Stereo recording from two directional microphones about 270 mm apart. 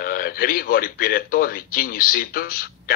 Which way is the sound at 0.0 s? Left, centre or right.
Left.